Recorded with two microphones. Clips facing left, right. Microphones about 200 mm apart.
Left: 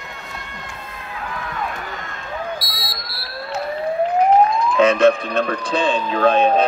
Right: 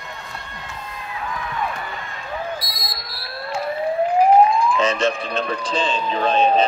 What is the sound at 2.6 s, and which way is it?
Smoke detector, 35° left (ahead or behind).